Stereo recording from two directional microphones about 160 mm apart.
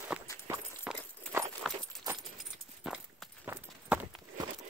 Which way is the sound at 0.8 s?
15° right (ahead or behind).